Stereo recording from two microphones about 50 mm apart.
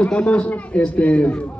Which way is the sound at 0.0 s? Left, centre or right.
Left.